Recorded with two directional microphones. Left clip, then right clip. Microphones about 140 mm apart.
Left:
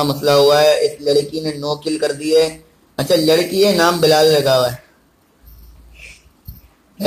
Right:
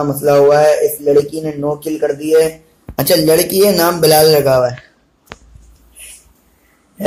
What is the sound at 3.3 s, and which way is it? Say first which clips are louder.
Speech: right 2 dB; 30° right (ahead or behind).